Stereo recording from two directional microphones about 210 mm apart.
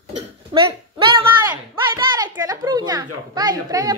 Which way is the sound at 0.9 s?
25° right (ahead or behind).